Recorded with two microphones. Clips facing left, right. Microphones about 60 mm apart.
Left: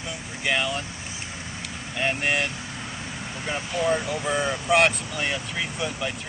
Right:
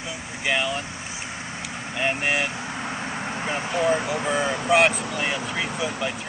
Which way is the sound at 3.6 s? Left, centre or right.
Right.